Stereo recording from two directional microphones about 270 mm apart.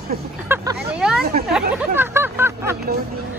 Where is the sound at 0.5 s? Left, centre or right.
Centre.